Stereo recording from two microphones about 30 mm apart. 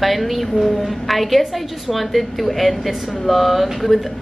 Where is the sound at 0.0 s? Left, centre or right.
Centre.